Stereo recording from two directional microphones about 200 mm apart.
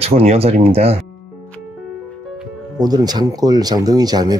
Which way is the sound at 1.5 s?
5° left (ahead or behind).